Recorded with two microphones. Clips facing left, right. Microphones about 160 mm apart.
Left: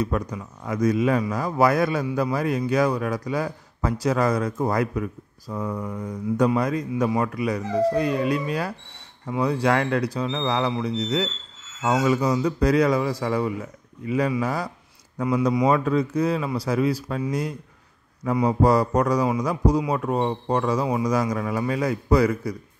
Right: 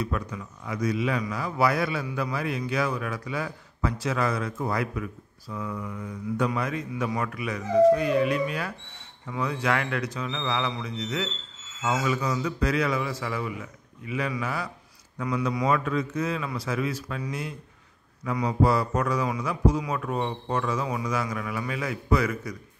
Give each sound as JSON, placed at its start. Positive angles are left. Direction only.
{"t": 0.0, "sound": "a man's voice", "side_deg": 35}
{"t": 15.1, "sound": "a man's voice", "side_deg": 25}
{"t": 18.5, "sound": "a man's voice", "side_deg": 40}